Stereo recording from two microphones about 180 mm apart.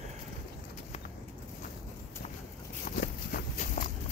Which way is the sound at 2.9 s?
55° left (ahead or behind).